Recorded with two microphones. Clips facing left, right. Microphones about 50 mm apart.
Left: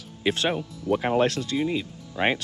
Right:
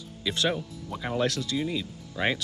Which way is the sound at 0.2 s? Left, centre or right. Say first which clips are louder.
Left 3 dB; left.